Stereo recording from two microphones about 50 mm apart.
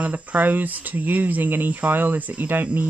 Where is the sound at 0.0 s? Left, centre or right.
Right.